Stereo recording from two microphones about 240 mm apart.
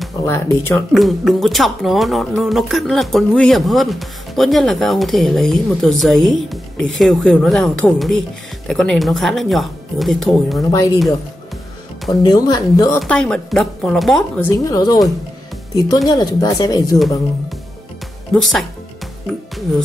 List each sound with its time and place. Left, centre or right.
0.2 s speech: centre
12.1 s speech: centre
13.0 s speech: centre
16.1 s speech: centre
18.3 s speech: centre